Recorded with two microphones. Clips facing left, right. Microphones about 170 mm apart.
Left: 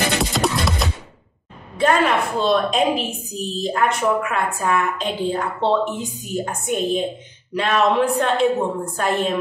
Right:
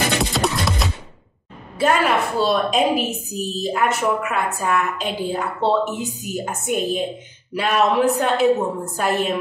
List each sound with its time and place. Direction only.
0.2 s music: centre (ahead or behind)
1.8 s a woman's voice: 5° right (ahead or behind)